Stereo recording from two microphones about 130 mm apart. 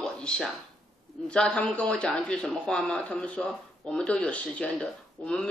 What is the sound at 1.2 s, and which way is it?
Speech, 5° left (ahead or behind).